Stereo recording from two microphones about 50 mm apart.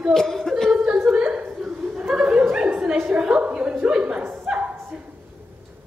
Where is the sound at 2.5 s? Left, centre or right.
Right.